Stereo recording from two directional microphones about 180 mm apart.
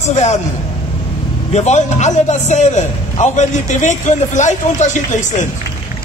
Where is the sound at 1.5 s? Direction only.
40° left (ahead or behind).